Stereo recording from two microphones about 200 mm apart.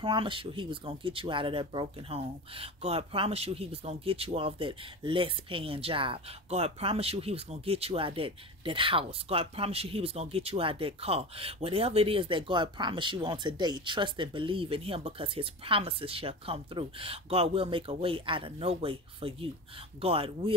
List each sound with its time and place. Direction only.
0.0 s speech: 25° right (ahead or behind)